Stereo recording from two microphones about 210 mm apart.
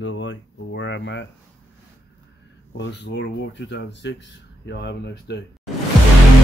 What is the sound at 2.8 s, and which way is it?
Speech, 55° left (ahead or behind).